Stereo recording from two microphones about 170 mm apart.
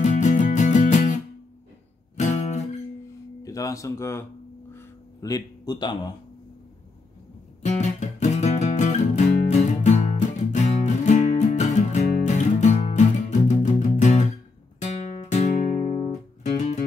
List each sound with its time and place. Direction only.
0.0 s music: 45° left (ahead or behind)
2.1 s guitar: 45° left (ahead or behind)
3.4 s speech: 20° left (ahead or behind)
4.7 s music: 20° left (ahead or behind)
7.6 s music: 45° left (ahead or behind)